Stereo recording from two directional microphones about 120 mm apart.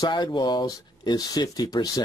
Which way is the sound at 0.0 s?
40° left (ahead or behind).